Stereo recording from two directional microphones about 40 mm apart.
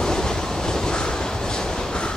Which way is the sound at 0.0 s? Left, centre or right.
Centre.